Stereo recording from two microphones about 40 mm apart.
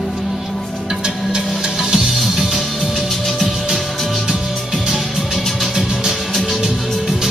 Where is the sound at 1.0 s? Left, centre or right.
Centre.